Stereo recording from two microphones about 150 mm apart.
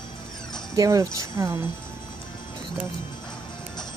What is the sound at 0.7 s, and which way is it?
Speech, 25° right (ahead or behind).